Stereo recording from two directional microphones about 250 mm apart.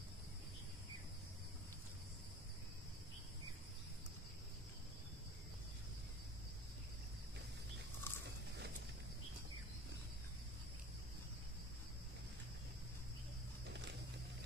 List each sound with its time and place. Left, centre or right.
8.1 s biting: centre
13.7 s wild animals: right